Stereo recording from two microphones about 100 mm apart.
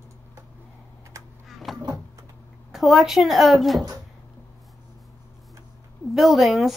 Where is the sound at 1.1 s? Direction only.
35° right (ahead or behind).